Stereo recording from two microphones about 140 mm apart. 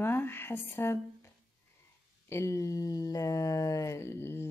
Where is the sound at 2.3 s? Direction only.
20° left (ahead or behind).